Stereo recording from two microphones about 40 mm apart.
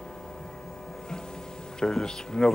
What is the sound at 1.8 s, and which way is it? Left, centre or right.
Speech, centre.